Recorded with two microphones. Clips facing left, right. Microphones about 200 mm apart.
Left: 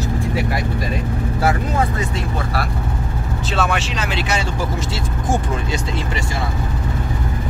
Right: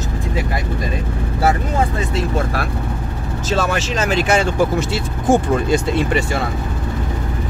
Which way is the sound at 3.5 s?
40° right (ahead or behind).